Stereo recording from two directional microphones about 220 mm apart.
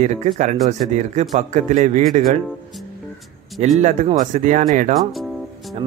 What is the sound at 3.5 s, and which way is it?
A man's voice, 30° right (ahead or behind).